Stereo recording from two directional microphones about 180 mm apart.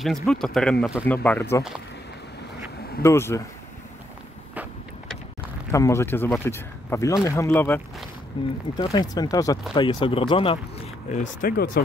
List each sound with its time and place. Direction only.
0.0 s speech: centre (ahead or behind)
3.0 s speech: 15° left (ahead or behind)
5.7 s speech: 15° left (ahead or behind)
8.3 s speech: 30° left (ahead or behind)
11.1 s speech: 55° left (ahead or behind)